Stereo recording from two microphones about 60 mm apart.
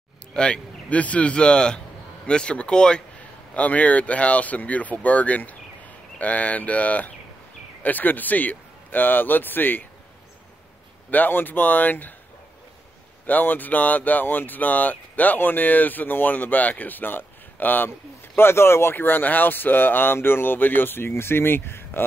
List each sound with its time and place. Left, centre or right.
0.3 s a man's voice: centre; by 9.8 s left
11.1 s speech: left
13.3 s speech: left
17.8 s speech: left